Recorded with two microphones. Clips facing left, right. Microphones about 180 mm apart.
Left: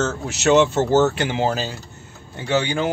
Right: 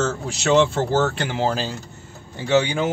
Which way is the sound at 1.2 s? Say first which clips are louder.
Left 1 dB; 5° left (ahead or behind).